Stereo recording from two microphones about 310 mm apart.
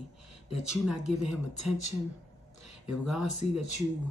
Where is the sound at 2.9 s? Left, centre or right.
Centre.